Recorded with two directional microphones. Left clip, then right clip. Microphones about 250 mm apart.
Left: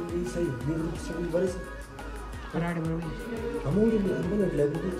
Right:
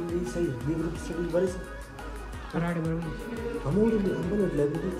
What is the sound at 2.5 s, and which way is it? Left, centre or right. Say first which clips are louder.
Music: right 1 dB; centre.